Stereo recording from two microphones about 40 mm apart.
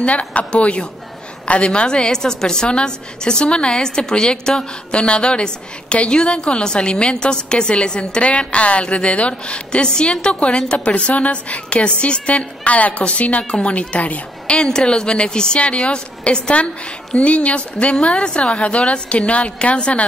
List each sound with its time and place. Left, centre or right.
0.0 s a woman's voice: left
13.5 s a woman's voice: left
13.7 s a woman's voice: left
14.6 s a woman's voice: left